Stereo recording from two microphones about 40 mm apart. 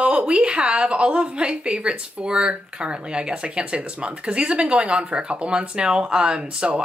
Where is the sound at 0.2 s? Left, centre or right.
Right.